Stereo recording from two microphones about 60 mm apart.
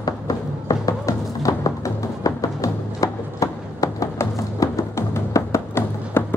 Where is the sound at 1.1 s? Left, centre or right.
Left.